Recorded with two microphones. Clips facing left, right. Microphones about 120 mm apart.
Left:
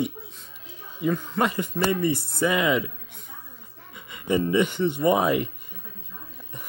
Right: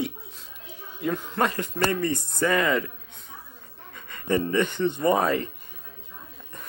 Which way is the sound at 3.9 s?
10° left (ahead or behind).